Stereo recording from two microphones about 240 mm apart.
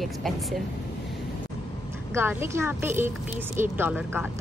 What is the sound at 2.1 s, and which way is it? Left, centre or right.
A woman's voice, centre.